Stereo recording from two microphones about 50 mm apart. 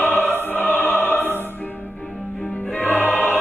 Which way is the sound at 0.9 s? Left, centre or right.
Left.